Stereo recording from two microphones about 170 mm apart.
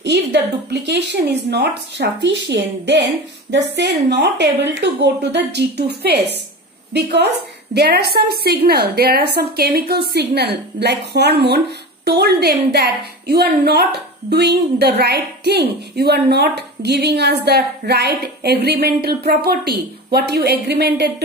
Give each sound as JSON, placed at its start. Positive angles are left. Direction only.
{"t": 0.0, "sound": "a woman's voice", "side_deg": -85}